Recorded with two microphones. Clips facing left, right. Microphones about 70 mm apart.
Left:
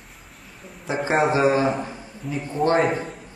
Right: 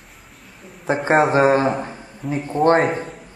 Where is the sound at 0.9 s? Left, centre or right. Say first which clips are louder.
Right 5 dB; right.